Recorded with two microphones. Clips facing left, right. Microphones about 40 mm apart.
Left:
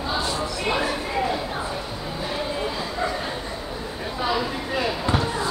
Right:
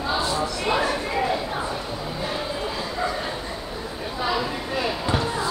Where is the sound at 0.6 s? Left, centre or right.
Centre.